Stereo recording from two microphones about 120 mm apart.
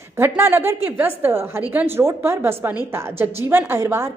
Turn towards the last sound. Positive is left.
turn(degrees=-20)  # may be behind; listen again after turning